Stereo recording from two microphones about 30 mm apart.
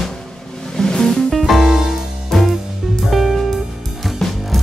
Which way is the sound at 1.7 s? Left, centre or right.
Centre.